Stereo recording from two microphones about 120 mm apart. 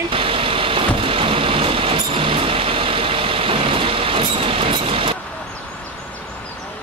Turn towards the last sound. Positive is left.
turn(degrees=-45)  # may be behind; listen again after turning